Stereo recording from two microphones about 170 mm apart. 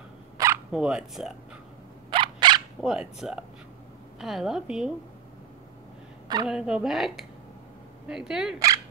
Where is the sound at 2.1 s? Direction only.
30° right (ahead or behind).